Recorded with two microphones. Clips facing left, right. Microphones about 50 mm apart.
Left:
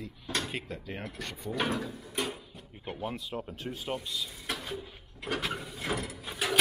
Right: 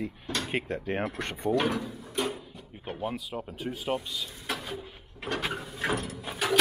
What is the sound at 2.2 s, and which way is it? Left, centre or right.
Drawer open or close, centre.